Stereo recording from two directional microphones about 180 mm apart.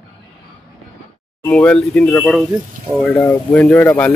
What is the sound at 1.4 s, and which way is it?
A man's voice, 5° left (ahead or behind).